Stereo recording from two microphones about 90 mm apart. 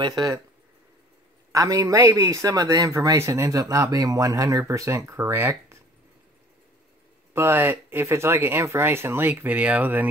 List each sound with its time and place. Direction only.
0.0 s speech: 50° right (ahead or behind)
1.5 s speech: 40° right (ahead or behind)
7.3 s speech: 25° right (ahead or behind)